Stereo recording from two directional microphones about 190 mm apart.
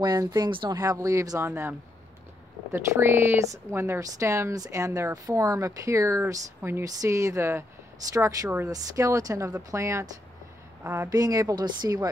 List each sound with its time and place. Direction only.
0.0 s a woman's voice: 20° right (ahead or behind)